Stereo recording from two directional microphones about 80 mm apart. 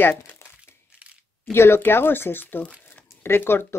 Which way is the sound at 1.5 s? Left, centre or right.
Left.